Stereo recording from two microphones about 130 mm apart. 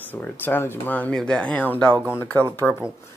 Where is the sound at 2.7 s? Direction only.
5° left (ahead or behind).